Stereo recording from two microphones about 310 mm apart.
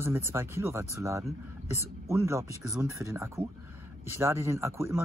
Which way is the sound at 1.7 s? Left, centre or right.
Centre.